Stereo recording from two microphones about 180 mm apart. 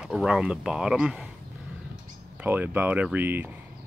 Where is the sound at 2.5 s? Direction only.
10° right (ahead or behind).